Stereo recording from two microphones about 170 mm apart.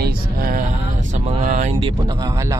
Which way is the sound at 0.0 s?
55° right (ahead or behind).